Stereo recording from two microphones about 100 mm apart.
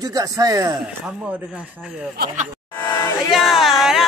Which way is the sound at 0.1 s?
35° right (ahead or behind).